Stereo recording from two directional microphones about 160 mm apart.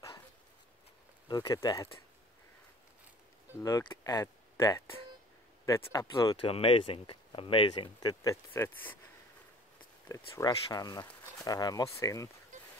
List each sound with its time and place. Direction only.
1.3 s speech: 25° left (ahead or behind)
3.6 s speech: 20° left (ahead or behind)
6.4 s speech: 35° left (ahead or behind); by 8.9 s 15° left (ahead or behind)
10.0 s speech: 20° left (ahead or behind)